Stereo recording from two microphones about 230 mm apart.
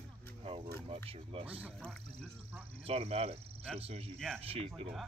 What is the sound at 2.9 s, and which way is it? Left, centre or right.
Speech, right.